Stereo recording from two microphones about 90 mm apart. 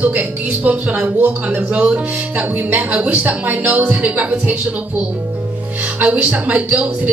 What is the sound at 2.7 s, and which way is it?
A woman's voice, 15° right (ahead or behind).